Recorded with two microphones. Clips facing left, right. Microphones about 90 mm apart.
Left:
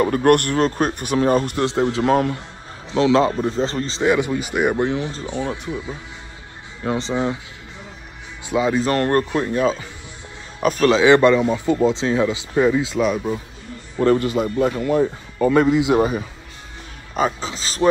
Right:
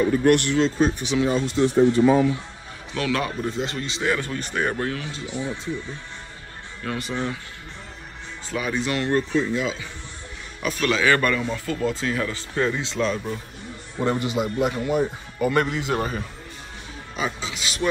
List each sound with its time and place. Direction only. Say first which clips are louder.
0.0 s speech: left 3 dB; 55° left (ahead or behind)
2.9 s speech: left 9 dB; 25° left (ahead or behind)
4.0 s speech: left 7 dB; 15° left (ahead or behind)
5.1 s speech: left 4 dB; 40° left (ahead or behind)
6.8 s speech: left 6 dB; 25° left (ahead or behind)
8.5 s speech: left 8 dB; 20° left (ahead or behind)
8.7 s speech: left 2 dB; 40° left (ahead or behind)
9.3 s speech: left 1 dB; 65° left (ahead or behind)
9.6 s speech: left 7 dB; 40° left (ahead or behind)
10.9 s speech: left 8 dB; 25° left (ahead or behind); by 13.2 s 10° left (ahead or behind)
14.0 s speech: left 6 dB; 20° right (ahead or behind)
15.5 s speech: left 9 dB; 5° left (ahead or behind)
17.1 s speech: left 7 dB; 40° left (ahead or behind)